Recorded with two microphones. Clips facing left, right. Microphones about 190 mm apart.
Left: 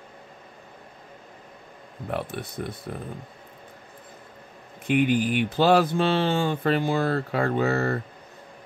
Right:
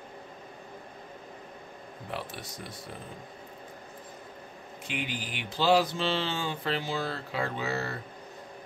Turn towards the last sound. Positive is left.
turn(degrees=55)  # may be behind; listen again after turning